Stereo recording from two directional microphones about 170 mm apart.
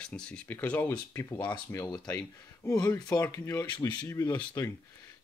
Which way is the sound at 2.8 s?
25° left (ahead or behind).